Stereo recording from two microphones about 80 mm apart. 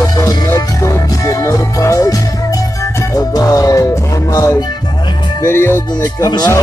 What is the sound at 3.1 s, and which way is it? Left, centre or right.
Music, left.